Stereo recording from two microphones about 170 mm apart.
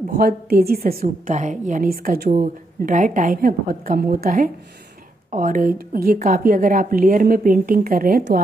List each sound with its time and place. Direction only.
0.1 s a woman's voice: 60° right (ahead or behind)
1.0 s a woman's voice: 45° right (ahead or behind)
2.3 s a woman's voice: 50° right (ahead or behind)